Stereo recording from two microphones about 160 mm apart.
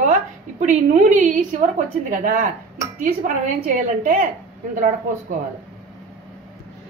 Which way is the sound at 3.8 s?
60° right (ahead or behind).